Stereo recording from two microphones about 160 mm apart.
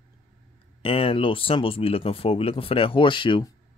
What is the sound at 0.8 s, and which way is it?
Speech, 35° left (ahead or behind).